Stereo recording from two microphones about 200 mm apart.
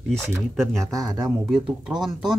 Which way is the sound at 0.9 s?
15° right (ahead or behind).